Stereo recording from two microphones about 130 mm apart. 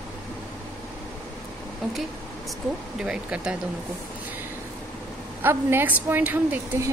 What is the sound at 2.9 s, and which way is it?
Speech, 5° right (ahead or behind).